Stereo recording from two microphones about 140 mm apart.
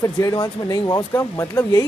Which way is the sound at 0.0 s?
25° left (ahead or behind).